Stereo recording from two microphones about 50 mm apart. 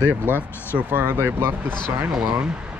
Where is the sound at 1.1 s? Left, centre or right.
Right.